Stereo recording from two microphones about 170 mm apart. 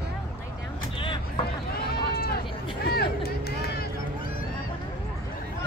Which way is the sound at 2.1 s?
60° left (ahead or behind).